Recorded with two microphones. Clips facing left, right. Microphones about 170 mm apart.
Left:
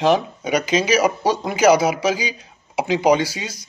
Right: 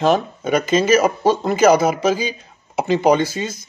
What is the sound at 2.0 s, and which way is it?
Speech, 50° right (ahead or behind).